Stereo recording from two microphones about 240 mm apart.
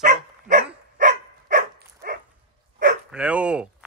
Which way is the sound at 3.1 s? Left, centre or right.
Centre.